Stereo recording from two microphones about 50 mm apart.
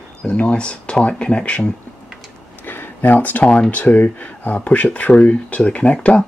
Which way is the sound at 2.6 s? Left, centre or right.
Left.